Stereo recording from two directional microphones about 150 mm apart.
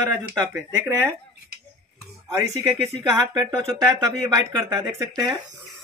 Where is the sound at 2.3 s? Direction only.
20° right (ahead or behind).